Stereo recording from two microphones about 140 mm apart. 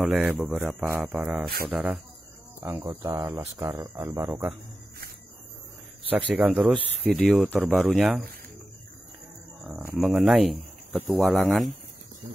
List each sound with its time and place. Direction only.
0.0 s speech: centre (ahead or behind)
2.6 s speech: 25° right (ahead or behind)
4.3 s speech: 10° right (ahead or behind)
6.0 s speech: 10° right (ahead or behind)
9.7 s speech: 10° right (ahead or behind)